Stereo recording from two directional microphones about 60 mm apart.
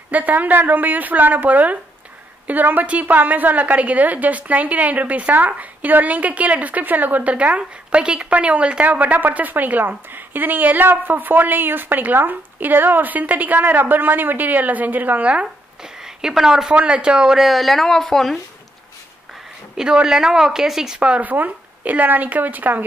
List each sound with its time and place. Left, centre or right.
0.1 s a woman's voice: right
15.8 s a woman's voice: centre
17.5 s a woman's voice: centre
19.8 s a woman's voice: centre; by 22.8 s right